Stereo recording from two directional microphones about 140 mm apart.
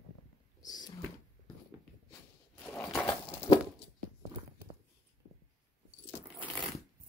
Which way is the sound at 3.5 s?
30° left (ahead or behind).